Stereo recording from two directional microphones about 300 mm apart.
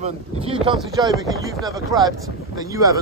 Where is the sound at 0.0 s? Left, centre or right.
Centre.